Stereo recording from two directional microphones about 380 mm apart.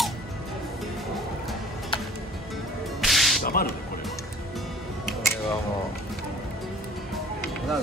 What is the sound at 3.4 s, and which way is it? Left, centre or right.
Whip, left.